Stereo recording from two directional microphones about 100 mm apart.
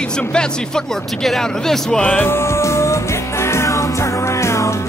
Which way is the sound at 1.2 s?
5° left (ahead or behind).